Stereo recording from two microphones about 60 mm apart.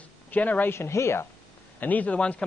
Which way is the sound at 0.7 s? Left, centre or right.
Left.